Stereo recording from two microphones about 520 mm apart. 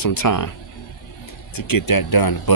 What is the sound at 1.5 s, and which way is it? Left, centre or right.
Speech, left.